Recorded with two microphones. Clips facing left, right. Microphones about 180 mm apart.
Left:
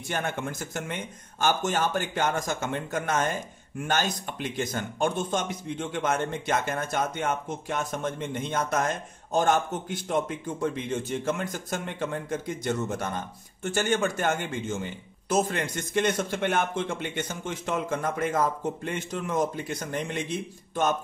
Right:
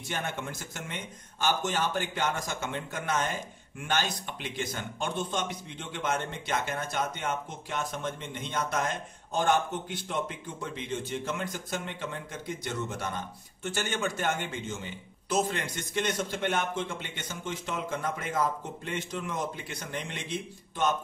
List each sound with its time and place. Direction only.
0.1 s speech: 50° left (ahead or behind)